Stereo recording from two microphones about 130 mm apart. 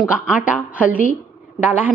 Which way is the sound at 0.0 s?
10° right (ahead or behind).